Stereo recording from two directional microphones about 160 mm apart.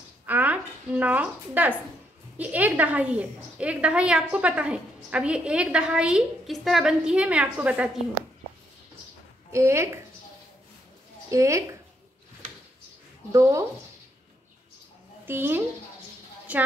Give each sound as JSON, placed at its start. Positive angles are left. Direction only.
{"t": 0.3, "sound": "a woman's voice", "side_deg": -10}
{"t": 9.5, "sound": "a woman's voice", "side_deg": -15}
{"t": 11.2, "sound": "a woman's voice", "side_deg": -20}
{"t": 13.3, "sound": "a woman's voice", "side_deg": -20}
{"t": 15.2, "sound": "a woman's voice", "side_deg": -15}